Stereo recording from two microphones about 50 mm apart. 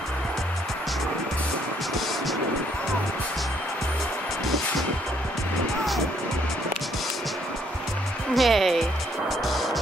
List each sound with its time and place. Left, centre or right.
8.4 s music: centre